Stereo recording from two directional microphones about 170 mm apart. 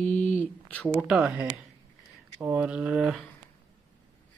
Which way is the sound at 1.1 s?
5° right (ahead or behind).